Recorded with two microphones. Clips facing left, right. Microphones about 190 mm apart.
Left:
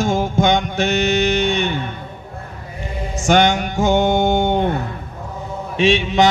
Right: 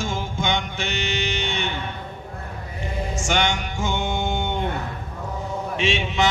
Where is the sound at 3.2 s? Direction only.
45° left (ahead or behind).